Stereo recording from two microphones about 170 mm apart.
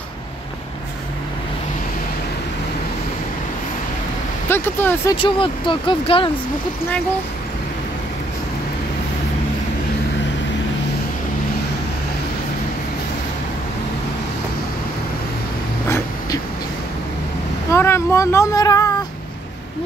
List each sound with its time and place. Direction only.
4.5 s speech: 10° left (ahead or behind)
5.1 s speech: 30° left (ahead or behind)
17.6 s a sound: 15° left (ahead or behind)